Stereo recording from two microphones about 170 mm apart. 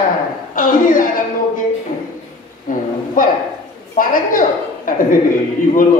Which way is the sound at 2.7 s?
55° left (ahead or behind).